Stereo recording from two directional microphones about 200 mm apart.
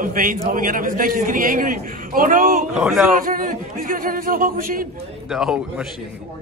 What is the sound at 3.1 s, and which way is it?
A man's voice, 45° right (ahead or behind).